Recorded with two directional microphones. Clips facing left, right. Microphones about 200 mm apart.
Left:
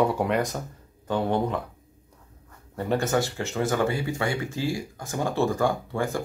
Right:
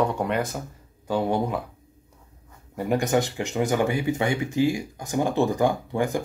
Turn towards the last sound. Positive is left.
turn(degrees=-20)  # may be behind; listen again after turning